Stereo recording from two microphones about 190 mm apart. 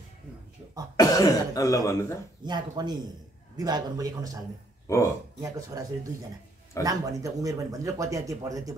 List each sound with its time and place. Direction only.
0.9 s cough: 20° left (ahead or behind)
2.4 s a man's voice: 20° right (ahead or behind)
4.8 s a man's voice: 15° left (ahead or behind)
5.4 s speech: 20° right (ahead or behind)